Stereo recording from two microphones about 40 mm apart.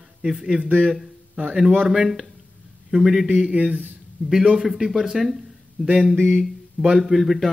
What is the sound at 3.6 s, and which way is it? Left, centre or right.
Speech, right.